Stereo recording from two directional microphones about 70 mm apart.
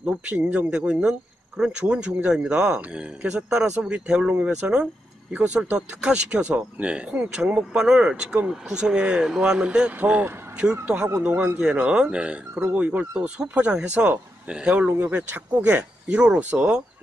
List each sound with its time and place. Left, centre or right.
0.4 s speech: centre
15.0 s speech: right